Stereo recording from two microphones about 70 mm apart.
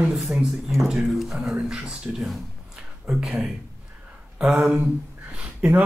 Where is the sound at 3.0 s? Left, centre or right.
Centre.